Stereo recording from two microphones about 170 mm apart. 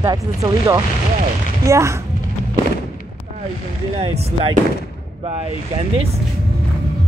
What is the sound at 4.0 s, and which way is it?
Speech, 35° right (ahead or behind).